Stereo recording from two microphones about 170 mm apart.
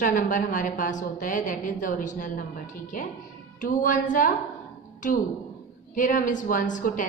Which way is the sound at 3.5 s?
50° left (ahead or behind).